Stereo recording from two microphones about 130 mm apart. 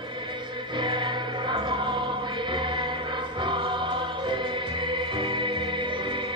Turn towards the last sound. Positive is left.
turn(degrees=-40)  # may be behind; listen again after turning